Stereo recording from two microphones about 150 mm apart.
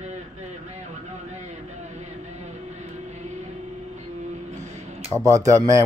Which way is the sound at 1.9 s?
50° right (ahead or behind).